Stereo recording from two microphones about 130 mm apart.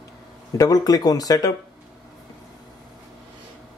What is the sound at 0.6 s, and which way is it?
Speech, 30° left (ahead or behind).